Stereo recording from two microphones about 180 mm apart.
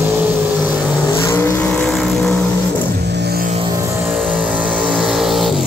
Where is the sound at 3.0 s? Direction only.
70° right (ahead or behind).